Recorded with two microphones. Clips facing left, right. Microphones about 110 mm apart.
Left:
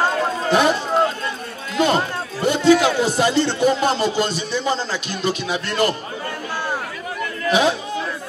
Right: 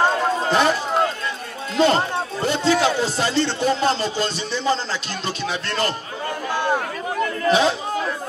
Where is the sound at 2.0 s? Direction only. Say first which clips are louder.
Right 1 dB; 25° right (ahead or behind).